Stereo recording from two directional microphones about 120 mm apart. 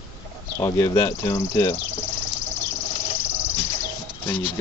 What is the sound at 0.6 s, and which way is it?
Speech, 30° left (ahead or behind).